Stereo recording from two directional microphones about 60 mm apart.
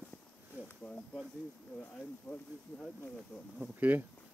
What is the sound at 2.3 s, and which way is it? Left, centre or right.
Speech, centre.